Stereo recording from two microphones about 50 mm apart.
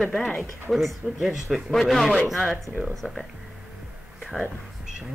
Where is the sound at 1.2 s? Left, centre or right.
Centre.